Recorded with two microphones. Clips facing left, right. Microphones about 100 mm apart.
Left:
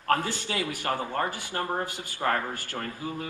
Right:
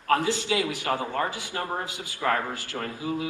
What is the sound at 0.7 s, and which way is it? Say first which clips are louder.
Speech: right 2 dB; 50° left (ahead or behind).